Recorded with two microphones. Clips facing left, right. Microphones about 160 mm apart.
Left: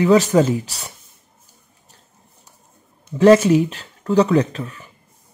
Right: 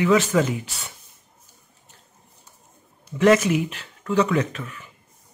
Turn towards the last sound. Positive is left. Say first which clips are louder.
# left 5 dB
turn(degrees=35)  # may be behind; listen again after turning